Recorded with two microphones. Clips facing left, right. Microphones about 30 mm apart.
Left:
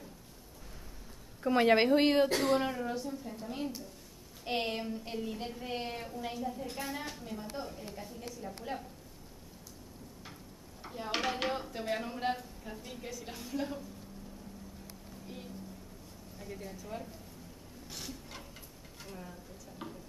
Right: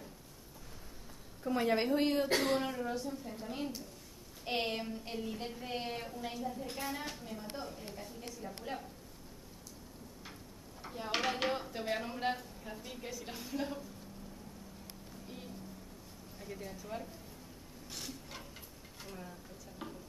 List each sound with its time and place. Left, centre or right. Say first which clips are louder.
1.4 s a woman's voice: left 6 dB; left
2.5 s speech: left 3 dB; centre
10.8 s speech: left 1 dB; centre
15.2 s vehicle: left 2 dB; centre
16.3 s speech: left 1 dB; centre
17.8 s filing: left 1 dB; centre
19.0 s speech: left 1 dB; centre
19.8 s tick-tock: left 1 dB; centre